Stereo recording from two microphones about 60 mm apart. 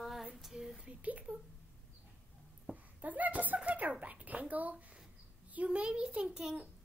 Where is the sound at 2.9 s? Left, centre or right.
Right; by 6.7 s centre.